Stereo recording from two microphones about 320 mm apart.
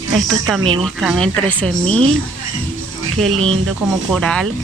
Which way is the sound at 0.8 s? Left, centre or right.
Centre.